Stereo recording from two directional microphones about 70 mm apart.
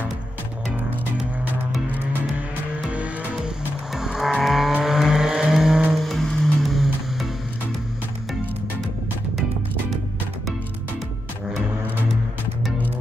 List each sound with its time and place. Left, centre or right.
2.9 s music: right
3.3 s vehicle: centre
6.0 s music: centre